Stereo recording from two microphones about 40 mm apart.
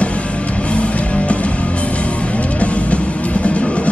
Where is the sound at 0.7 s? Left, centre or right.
Left.